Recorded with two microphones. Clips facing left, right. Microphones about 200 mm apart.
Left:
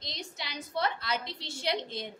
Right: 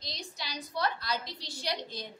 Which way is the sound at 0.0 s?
20° left (ahead or behind).